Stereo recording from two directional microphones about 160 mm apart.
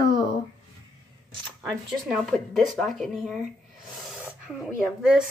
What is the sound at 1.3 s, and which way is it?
Speech, centre (ahead or behind).